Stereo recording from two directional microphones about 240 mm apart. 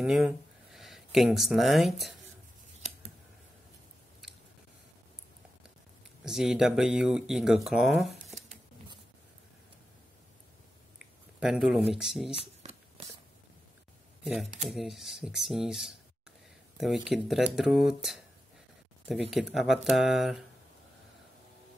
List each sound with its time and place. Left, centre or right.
0.0 s speech: centre
6.2 s speech: centre
8.4 s a sound: right
11.3 s speech: centre
14.2 s speech: centre
19.3 s speech: centre